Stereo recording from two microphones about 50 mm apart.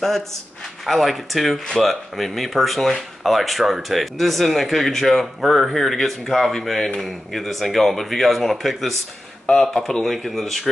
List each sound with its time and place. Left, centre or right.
0.8 s speech: centre